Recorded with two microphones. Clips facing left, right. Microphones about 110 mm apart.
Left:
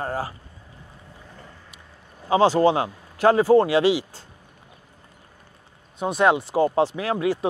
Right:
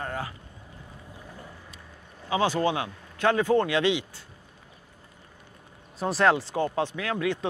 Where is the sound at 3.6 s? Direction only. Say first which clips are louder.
Left 6 dB; 25° left (ahead or behind).